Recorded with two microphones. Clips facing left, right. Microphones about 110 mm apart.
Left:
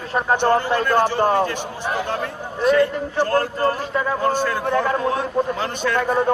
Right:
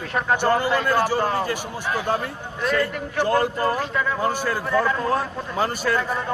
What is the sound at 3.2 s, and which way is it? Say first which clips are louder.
Speech: left 1 dB; 15° right (ahead or behind).